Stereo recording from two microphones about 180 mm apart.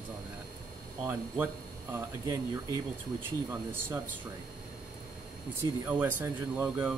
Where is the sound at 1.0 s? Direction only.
10° right (ahead or behind).